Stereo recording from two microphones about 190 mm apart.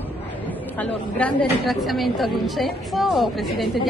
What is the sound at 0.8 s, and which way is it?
A woman's voice, 5° left (ahead or behind).